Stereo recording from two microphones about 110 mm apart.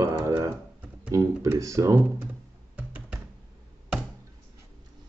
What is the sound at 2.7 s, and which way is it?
Music, 10° right (ahead or behind).